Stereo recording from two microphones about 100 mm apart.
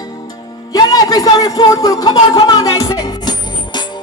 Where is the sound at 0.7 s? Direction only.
40° left (ahead or behind).